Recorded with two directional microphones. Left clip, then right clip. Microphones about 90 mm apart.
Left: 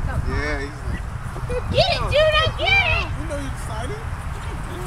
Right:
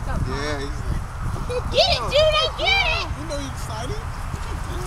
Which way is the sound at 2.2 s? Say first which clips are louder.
Left 2 dB; 20° right (ahead or behind).